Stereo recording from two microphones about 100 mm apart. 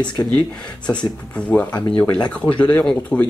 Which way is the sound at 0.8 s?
15° left (ahead or behind).